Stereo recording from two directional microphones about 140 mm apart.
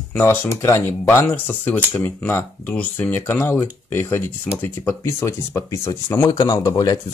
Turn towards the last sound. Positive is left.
turn(degrees=25)  # may be behind; listen again after turning